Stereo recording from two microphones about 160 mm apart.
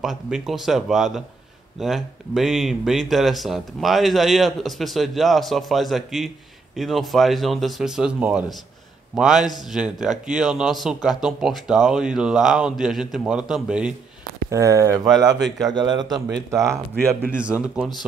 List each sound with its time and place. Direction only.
0.0 s speech: centre (ahead or behind)
14.5 s speech: 20° right (ahead or behind)
17.3 s a man's voice: 5° right (ahead or behind)